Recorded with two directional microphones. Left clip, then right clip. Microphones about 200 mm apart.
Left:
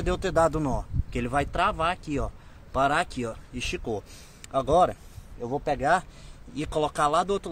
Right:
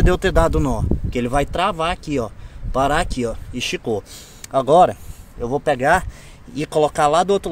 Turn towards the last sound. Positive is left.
turn(degrees=-25)  # may be behind; listen again after turning